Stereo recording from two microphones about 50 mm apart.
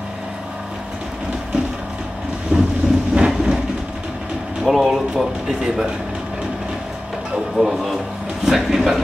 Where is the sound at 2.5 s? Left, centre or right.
Right.